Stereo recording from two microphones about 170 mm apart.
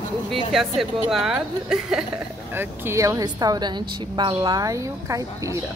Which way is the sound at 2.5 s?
15° right (ahead or behind).